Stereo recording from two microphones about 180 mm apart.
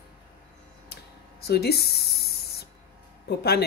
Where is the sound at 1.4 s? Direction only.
65° left (ahead or behind).